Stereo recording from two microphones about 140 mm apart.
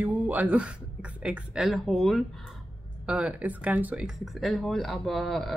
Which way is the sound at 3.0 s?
10° right (ahead or behind).